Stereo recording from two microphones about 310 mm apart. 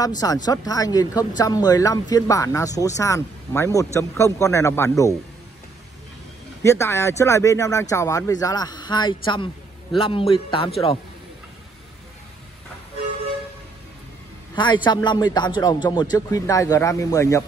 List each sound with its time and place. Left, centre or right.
0.2 s speech: centre
6.6 s speech: centre
14.5 s speech: centre